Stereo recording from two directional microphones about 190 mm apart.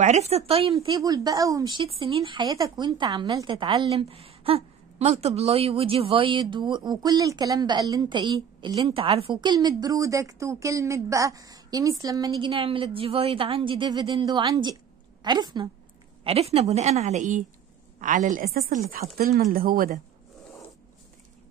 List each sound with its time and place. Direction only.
0.0 s speech: 35° right (ahead or behind)
16.3 s a woman's voice: 35° right (ahead or behind); by 20.0 s 50° right (ahead or behind)